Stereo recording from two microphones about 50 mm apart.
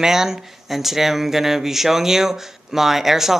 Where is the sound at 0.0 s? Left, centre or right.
Centre.